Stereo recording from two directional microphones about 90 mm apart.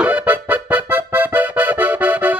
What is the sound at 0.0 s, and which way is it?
Accordion, 15° right (ahead or behind).